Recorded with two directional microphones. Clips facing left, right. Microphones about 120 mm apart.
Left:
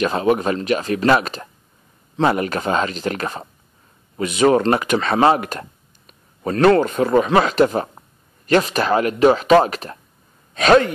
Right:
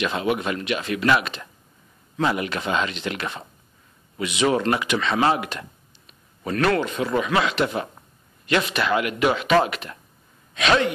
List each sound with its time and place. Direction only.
0.0 s speech: 40° left (ahead or behind)